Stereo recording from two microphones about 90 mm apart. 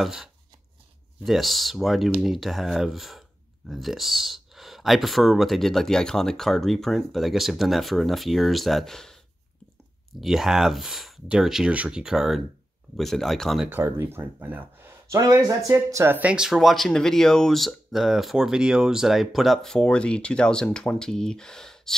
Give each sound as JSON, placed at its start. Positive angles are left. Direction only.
{"t": 0.0, "sound": "speech", "side_deg": -5}
{"t": 10.2, "sound": "speech", "side_deg": -5}
{"t": 13.7, "sound": "speech", "side_deg": -25}
{"t": 15.1, "sound": "speech", "side_deg": -40}
{"t": 16.2, "sound": "speech", "side_deg": -10}